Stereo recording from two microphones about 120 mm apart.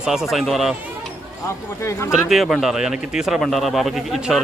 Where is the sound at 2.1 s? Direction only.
Centre (ahead or behind).